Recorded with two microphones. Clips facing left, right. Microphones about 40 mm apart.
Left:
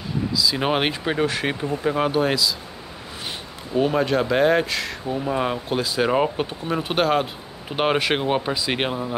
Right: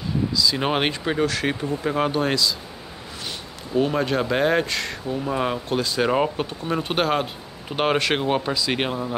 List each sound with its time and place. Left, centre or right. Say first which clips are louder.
0.4 s speech: left 1 dB; centre
1.1 s speech: even; centre
1.8 s speech: left 3 dB; centre
3.7 s speech: left 1 dB; centre